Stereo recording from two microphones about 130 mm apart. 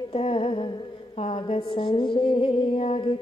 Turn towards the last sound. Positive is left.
turn(degrees=45)  # may be behind; listen again after turning